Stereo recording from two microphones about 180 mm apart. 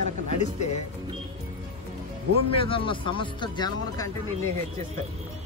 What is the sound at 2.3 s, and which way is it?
Speech, 30° left (ahead or behind).